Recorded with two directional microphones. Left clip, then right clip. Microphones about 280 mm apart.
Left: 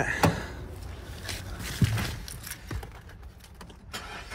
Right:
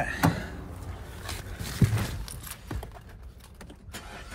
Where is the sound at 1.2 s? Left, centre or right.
Centre.